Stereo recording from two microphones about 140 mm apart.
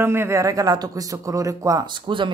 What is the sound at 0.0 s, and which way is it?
A man's voice, 15° right (ahead or behind).